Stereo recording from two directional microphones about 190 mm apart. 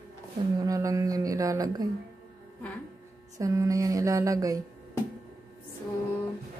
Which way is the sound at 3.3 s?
15° right (ahead or behind).